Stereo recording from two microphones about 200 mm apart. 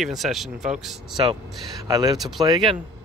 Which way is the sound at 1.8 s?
15° right (ahead or behind).